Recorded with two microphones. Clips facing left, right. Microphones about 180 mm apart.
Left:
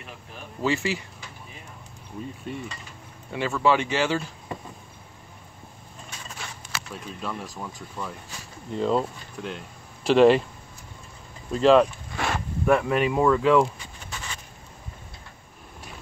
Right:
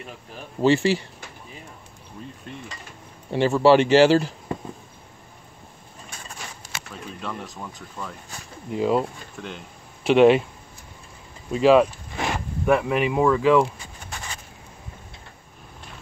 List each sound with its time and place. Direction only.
0.6 s speech: 30° right (ahead or behind)
3.3 s speech: 30° right (ahead or behind)
3.8 s speech: 75° right (ahead or behind)
6.6 s a sound: 40° right (ahead or behind)
7.2 s speech: centre (ahead or behind)
11.5 s speech: 5° right (ahead or behind)